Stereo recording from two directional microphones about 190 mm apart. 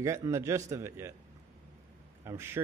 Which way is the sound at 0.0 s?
15° right (ahead or behind).